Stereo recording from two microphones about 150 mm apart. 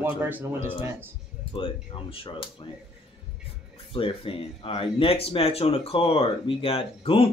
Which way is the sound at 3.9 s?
35° left (ahead or behind).